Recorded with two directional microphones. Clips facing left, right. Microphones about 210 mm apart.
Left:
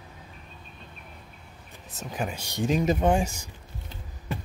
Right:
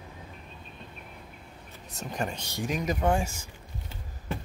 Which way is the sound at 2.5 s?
25° left (ahead or behind).